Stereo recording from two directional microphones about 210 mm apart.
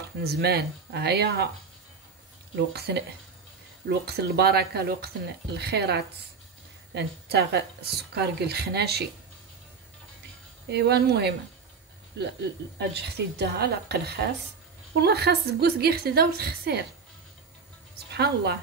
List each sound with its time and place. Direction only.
0.2 s speech: 50° right (ahead or behind)
2.5 s speech: 50° right (ahead or behind)
4.0 s speech: 50° right (ahead or behind)
10.7 s speech: 50° right (ahead or behind)
18.1 s speech: 50° right (ahead or behind)